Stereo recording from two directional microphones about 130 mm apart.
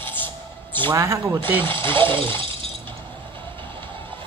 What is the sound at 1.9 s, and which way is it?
Speech, 15° left (ahead or behind).